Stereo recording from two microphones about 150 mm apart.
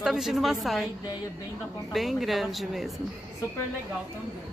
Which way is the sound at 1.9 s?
Centre (ahead or behind).